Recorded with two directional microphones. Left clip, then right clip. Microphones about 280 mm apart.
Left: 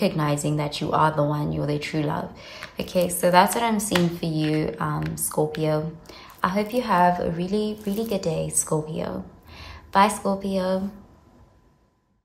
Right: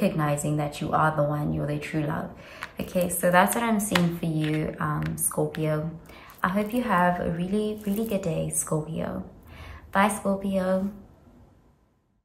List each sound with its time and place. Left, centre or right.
0.0 s speech: centre